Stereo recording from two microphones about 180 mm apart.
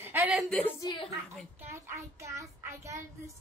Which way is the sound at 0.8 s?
25° left (ahead or behind).